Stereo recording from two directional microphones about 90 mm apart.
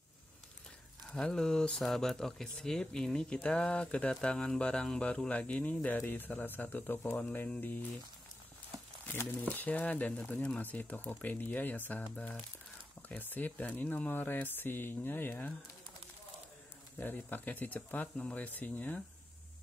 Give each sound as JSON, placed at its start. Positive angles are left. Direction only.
{"t": 1.1, "sound": "speech", "side_deg": 10}
{"t": 9.0, "sound": "a sound", "side_deg": 25}
{"t": 9.5, "sound": "speech", "side_deg": 20}
{"t": 13.1, "sound": "speech", "side_deg": 20}
{"t": 17.0, "sound": "speech", "side_deg": 20}